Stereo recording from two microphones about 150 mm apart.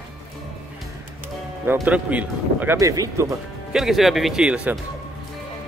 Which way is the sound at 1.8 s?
10° right (ahead or behind).